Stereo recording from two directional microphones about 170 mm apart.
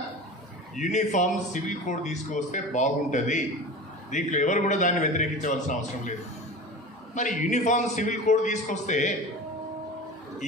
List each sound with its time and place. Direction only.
0.7 s a man's voice: 45° left (ahead or behind)
7.2 s a man's voice: 45° left (ahead or behind)